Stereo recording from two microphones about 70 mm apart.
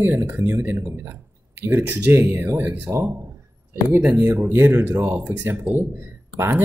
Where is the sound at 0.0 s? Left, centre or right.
Right.